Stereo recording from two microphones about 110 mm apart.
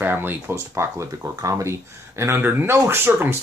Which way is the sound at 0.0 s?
20° right (ahead or behind).